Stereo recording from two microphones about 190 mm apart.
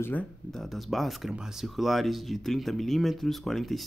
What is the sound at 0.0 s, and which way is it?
Speech, 10° left (ahead or behind).